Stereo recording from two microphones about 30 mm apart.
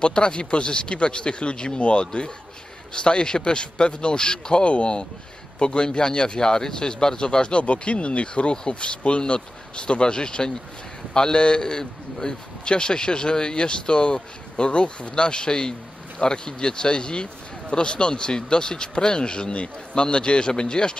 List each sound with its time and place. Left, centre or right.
0.0 s a man's voice: left
7.6 s a man's voice: left
11.6 s a man's voice: left